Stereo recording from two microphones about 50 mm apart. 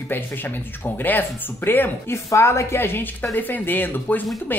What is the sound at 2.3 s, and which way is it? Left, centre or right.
A woman's voice, left.